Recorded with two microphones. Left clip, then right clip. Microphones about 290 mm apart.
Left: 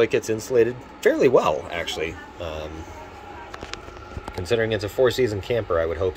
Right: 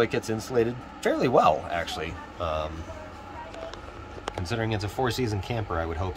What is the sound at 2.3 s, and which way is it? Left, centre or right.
Speech, right.